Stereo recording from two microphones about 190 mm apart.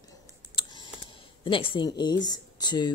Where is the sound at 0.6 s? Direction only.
25° left (ahead or behind).